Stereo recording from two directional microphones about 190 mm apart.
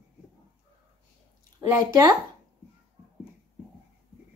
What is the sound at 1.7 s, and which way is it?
Speech, 20° right (ahead or behind).